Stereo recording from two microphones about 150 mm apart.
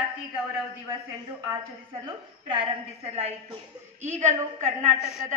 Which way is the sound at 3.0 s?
40° right (ahead or behind).